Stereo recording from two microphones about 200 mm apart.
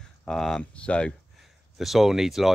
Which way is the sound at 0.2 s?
5° left (ahead or behind).